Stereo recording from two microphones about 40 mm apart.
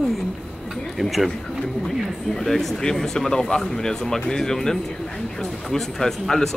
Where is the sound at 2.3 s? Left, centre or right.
Centre.